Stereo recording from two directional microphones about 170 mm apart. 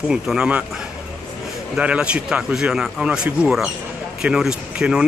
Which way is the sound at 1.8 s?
5° right (ahead or behind).